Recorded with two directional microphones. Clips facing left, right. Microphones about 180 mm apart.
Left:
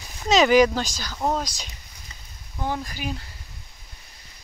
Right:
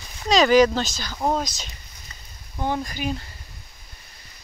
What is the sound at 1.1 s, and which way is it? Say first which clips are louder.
Speech: right 1 dB; 10° right (ahead or behind).